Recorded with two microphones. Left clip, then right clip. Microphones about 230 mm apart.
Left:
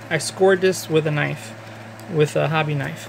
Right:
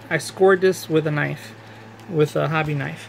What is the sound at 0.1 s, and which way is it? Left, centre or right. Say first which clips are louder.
Speech: even; centre.